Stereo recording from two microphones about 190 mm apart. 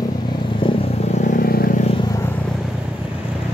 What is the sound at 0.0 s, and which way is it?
Vehicle, 25° left (ahead or behind).